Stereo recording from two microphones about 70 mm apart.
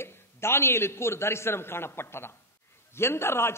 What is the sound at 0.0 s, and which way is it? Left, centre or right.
A man's voice, left.